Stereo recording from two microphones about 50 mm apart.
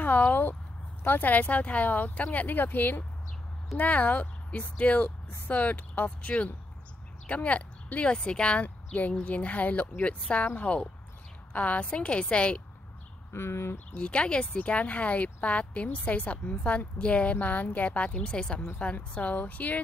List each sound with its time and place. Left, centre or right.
0.0 s a woman's voice: left
8.6 s a woman's voice: left
13.3 s speech: left
13.9 s a woman's voice: left